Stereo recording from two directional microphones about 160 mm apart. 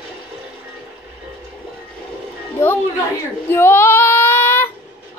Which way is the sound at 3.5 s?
15° left (ahead or behind).